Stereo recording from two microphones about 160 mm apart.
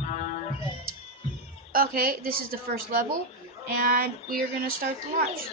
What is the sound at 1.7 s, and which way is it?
A woman's voice, 65° right (ahead or behind).